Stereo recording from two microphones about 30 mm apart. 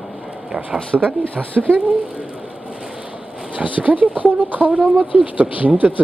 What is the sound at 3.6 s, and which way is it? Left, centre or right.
Speech, right.